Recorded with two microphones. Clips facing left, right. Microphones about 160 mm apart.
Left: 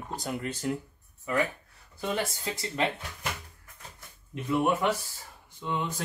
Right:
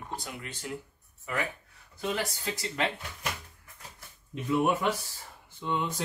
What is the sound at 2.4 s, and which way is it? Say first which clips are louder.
Speech: left 1 dB; 25° left (ahead or behind).